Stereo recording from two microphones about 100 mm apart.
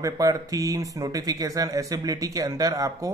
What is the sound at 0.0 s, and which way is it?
Speech, 35° right (ahead or behind).